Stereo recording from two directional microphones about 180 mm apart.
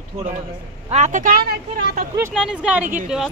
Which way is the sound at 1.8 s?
65° right (ahead or behind).